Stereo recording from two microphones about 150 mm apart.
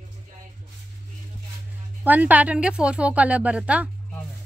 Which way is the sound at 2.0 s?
10° right (ahead or behind).